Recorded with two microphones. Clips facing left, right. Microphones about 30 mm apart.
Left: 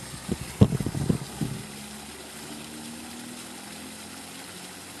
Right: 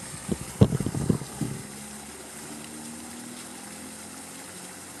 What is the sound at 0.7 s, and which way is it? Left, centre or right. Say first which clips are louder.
Vehicle: right 1 dB; left.